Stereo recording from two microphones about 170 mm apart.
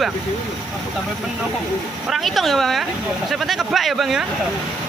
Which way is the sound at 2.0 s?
Centre (ahead or behind).